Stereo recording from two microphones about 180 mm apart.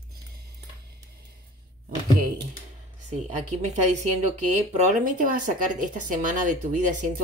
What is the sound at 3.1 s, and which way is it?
A woman's voice, 40° right (ahead or behind).